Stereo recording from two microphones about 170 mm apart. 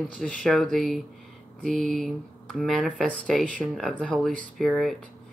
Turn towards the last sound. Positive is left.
turn(degrees=0)  # may be behind; listen again after turning